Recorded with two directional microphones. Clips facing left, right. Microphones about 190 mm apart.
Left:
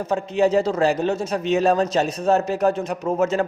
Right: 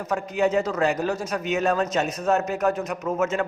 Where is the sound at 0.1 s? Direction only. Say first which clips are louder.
Left 4 dB; 30° left (ahead or behind).